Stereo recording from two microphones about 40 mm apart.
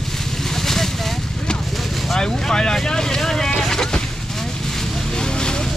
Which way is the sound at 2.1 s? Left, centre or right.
Centre.